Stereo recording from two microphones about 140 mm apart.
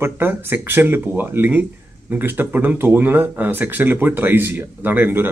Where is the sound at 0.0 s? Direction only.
15° right (ahead or behind).